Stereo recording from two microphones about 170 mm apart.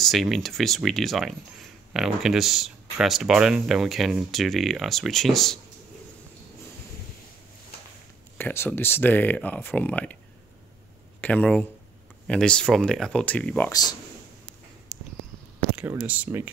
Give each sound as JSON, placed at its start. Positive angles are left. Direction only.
{"t": 0.0, "sound": "speech", "side_deg": 0}
{"t": 8.4, "sound": "speech", "side_deg": 10}
{"t": 11.1, "sound": "speech", "side_deg": 10}
{"t": 13.7, "sound": "speech", "side_deg": 25}
{"t": 15.7, "sound": "speech", "side_deg": -10}